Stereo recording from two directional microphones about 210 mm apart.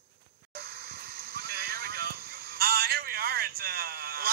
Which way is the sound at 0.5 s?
50° right (ahead or behind).